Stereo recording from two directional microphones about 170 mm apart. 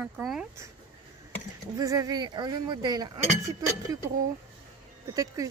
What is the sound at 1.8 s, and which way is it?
Speech, 20° right (ahead or behind).